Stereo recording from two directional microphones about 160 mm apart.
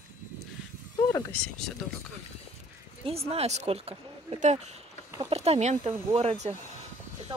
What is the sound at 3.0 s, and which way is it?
Speech, 40° right (ahead or behind).